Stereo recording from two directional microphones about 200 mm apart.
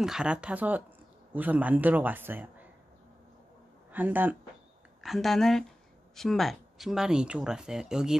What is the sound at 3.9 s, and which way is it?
A man's voice, 10° right (ahead or behind).